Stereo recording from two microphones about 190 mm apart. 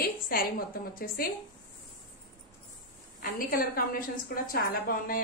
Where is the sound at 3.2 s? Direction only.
50° left (ahead or behind).